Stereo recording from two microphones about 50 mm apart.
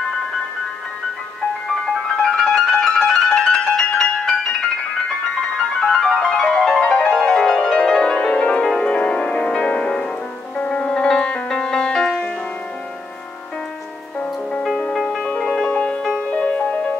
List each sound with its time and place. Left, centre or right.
2.5 s music: centre
5.8 s music: centre
8.6 s music: centre
15.2 s music: centre